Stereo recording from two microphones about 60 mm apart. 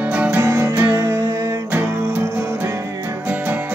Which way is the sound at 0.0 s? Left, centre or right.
Right.